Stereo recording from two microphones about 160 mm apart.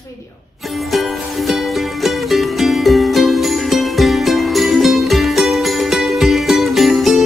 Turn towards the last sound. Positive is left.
turn(degrees=0)  # may be behind; listen again after turning